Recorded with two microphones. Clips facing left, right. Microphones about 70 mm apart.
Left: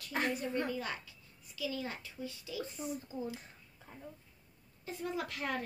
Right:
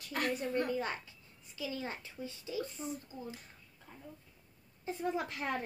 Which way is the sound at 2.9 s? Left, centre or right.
Left.